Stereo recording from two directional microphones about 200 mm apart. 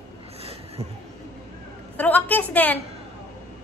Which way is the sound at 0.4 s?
30° right (ahead or behind).